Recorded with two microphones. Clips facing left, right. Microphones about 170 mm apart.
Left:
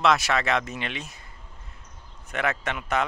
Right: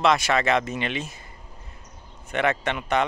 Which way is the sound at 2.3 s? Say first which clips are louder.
Right 4 dB; centre (ahead or behind).